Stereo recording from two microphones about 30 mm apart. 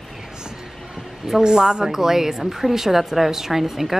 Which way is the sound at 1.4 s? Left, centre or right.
Right.